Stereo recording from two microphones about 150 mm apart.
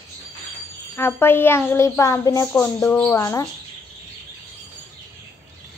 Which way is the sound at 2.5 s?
5° left (ahead or behind).